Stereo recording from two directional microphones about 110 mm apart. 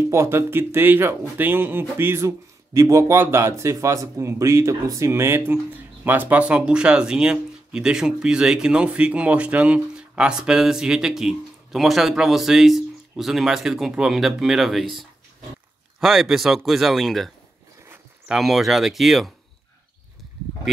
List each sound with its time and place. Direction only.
0.1 s speech: 25° right (ahead or behind); by 17.3 s centre (ahead or behind)
18.3 s speech: centre (ahead or behind)